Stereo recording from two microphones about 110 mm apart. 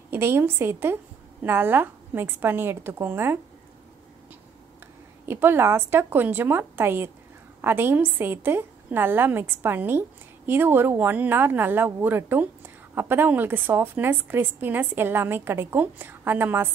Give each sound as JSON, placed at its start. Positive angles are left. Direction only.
{"t": 0.1, "sound": "a woman's voice", "side_deg": -20}
{"t": 5.2, "sound": "a woman's voice", "side_deg": -20}